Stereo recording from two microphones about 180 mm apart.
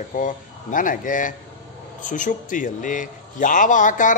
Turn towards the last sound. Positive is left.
turn(degrees=45)  # may be behind; listen again after turning